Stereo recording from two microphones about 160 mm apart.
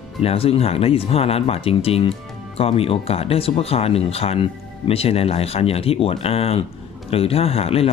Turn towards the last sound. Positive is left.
turn(degrees=40)  # may be behind; listen again after turning